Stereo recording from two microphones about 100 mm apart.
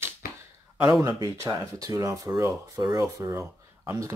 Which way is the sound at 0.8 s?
30° right (ahead or behind).